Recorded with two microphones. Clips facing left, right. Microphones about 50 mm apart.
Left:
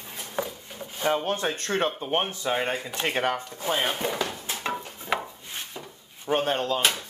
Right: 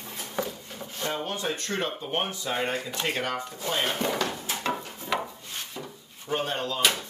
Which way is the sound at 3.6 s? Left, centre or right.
Centre.